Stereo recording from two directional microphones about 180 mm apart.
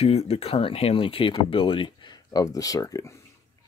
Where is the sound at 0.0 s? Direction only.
35° left (ahead or behind); by 3.2 s 15° left (ahead or behind).